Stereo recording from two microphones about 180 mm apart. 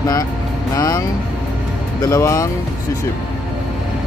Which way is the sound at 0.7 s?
20° left (ahead or behind).